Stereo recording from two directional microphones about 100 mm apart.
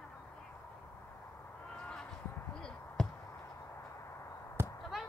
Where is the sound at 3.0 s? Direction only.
5° left (ahead or behind).